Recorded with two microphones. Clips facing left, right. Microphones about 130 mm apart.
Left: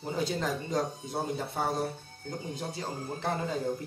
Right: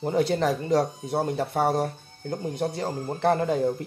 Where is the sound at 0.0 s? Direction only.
65° right (ahead or behind).